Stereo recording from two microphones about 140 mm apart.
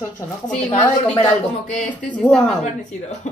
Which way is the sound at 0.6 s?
10° left (ahead or behind).